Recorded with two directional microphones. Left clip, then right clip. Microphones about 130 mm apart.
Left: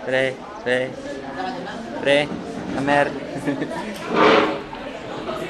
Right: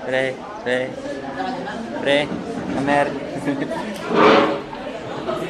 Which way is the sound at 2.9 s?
Centre (ahead or behind).